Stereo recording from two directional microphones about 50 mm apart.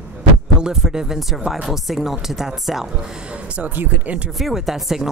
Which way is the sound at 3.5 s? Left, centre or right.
Right.